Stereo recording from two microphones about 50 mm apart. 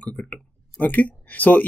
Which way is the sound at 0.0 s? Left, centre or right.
Left.